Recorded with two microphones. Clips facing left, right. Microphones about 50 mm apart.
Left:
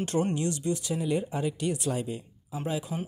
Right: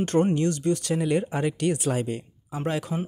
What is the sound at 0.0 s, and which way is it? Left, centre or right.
Speech, right.